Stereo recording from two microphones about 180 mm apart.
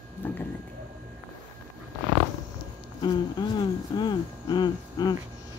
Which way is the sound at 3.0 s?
25° left (ahead or behind).